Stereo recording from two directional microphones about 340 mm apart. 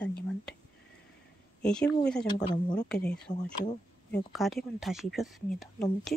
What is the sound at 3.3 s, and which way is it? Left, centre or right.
Speech, left.